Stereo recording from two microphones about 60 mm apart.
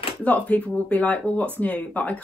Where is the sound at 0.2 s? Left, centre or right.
Left.